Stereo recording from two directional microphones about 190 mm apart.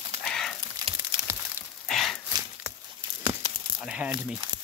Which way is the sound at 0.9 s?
25° right (ahead or behind).